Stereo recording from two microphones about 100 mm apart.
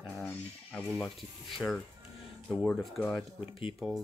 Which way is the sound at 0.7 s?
10° left (ahead or behind).